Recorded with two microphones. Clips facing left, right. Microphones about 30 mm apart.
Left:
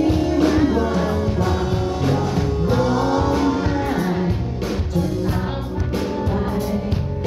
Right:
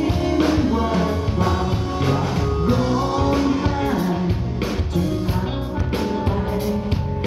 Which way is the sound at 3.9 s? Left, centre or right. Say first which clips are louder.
Left 1 dB; centre.